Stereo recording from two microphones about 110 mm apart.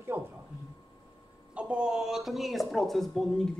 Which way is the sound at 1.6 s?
10° right (ahead or behind).